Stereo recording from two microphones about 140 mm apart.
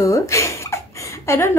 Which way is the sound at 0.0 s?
20° left (ahead or behind).